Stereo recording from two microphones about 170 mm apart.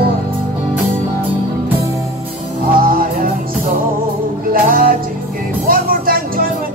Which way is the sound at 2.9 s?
55° right (ahead or behind).